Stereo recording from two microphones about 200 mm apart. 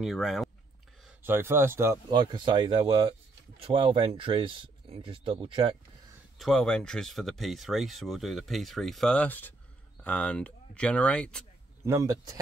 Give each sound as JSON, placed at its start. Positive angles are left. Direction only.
{"t": 0.0, "sound": "speech", "side_deg": 0}
{"t": 1.0, "sound": "speech", "side_deg": -10}
{"t": 6.3, "sound": "speech", "side_deg": 0}
{"t": 11.8, "sound": "a man's voice", "side_deg": -15}